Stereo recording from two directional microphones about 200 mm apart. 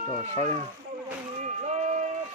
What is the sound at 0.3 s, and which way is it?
Speech, 20° left (ahead or behind).